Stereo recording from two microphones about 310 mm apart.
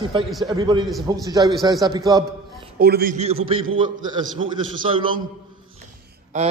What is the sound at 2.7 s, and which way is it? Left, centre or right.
A man's voice, right.